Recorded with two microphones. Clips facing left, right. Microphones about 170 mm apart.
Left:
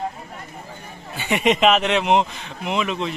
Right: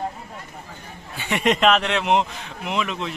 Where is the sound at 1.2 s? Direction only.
Centre (ahead or behind).